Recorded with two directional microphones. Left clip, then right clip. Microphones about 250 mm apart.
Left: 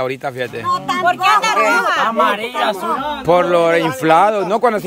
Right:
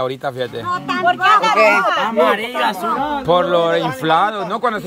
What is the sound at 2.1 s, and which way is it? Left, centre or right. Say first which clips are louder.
Speech: even; centre.